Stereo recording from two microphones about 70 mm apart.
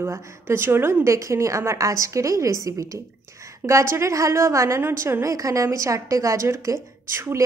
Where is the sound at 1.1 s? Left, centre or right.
Right.